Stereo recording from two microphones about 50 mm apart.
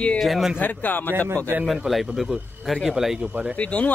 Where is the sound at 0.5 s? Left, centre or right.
Left.